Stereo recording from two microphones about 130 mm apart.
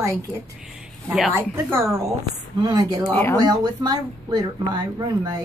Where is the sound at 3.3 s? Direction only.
30° right (ahead or behind).